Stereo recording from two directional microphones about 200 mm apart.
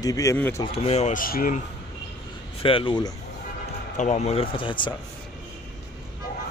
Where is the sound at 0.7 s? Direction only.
30° left (ahead or behind).